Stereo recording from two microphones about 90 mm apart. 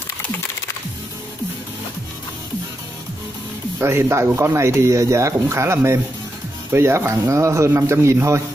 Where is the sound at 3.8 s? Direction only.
30° right (ahead or behind).